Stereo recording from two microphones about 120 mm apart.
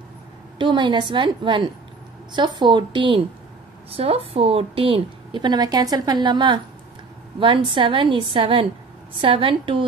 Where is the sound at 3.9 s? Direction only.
55° right (ahead or behind).